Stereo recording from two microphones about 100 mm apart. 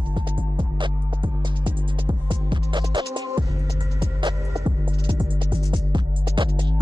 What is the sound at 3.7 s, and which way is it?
Music, 60° right (ahead or behind).